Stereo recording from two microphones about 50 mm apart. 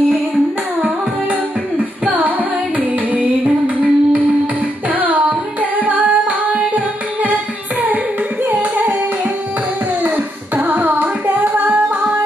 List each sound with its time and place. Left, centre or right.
3.1 s music: right
8.5 s carnatic music: right
10.0 s singing: right